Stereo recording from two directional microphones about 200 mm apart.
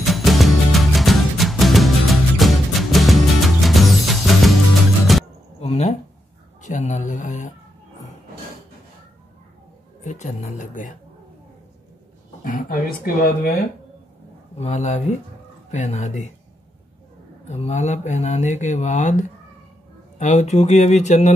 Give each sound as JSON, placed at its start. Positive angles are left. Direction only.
{"t": 0.0, "sound": "music", "side_deg": 0}
{"t": 5.6, "sound": "a sound", "side_deg": 30}
{"t": 6.6, "sound": "speech", "side_deg": 40}
{"t": 10.0, "sound": "speech", "side_deg": 35}
{"t": 12.4, "sound": "speech", "side_deg": 45}
{"t": 14.6, "sound": "speech", "side_deg": 35}
{"t": 17.5, "sound": "speech", "side_deg": 35}